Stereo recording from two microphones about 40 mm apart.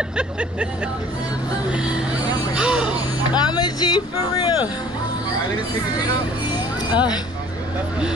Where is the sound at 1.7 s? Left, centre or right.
Right.